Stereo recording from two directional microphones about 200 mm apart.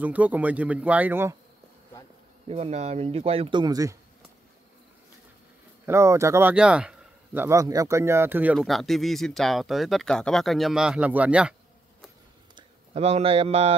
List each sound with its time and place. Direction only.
0.0 s speech: 10° right (ahead or behind)
2.4 s speech: 30° right (ahead or behind)
5.9 s speech: 15° right (ahead or behind)
12.5 s speech: 30° right (ahead or behind)